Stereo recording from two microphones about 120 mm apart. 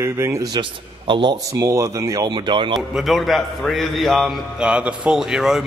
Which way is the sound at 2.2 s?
40° right (ahead or behind).